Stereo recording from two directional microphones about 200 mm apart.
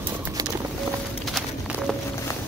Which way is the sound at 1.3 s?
Centre (ahead or behind).